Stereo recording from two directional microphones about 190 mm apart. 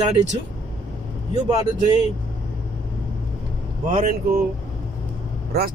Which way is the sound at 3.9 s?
40° right (ahead or behind).